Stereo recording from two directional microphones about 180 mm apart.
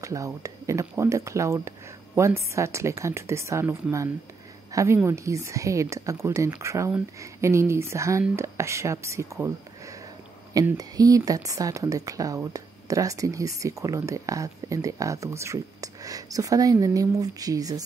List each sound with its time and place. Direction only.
0.0 s speech: 15° right (ahead or behind)